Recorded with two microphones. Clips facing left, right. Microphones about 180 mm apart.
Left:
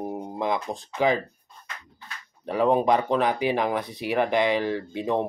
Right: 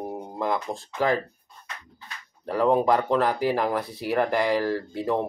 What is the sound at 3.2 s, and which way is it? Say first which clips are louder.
Speech: even; 5° right (ahead or behind).